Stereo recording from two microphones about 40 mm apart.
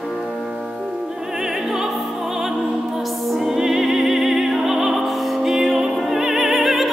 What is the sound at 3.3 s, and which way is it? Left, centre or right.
Opera, centre.